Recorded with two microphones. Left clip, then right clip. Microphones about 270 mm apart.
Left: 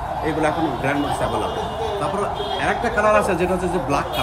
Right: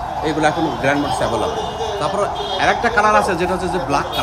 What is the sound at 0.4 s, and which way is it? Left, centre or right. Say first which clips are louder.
Speech: right 4 dB; right.